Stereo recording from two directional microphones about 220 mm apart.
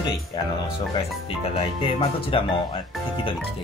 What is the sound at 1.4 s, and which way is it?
Speech, 25° left (ahead or behind).